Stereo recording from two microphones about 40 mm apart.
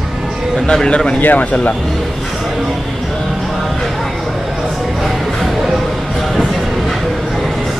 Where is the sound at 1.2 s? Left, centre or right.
Left.